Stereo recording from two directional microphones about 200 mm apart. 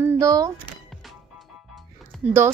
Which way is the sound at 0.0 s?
15° right (ahead or behind).